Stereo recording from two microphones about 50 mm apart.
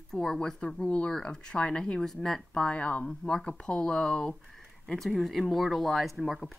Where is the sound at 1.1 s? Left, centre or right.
Centre.